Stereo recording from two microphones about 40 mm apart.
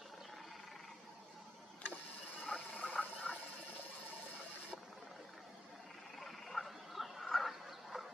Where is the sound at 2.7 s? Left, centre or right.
Left.